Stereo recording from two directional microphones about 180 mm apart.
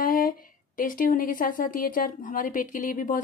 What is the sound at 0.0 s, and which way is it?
A woman's voice, 50° left (ahead or behind).